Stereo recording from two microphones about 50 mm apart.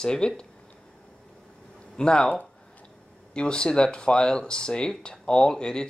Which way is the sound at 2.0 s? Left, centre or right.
Centre.